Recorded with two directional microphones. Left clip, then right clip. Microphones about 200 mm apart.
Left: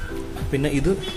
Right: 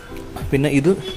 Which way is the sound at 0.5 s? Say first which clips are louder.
Right 5 dB; 30° right (ahead or behind).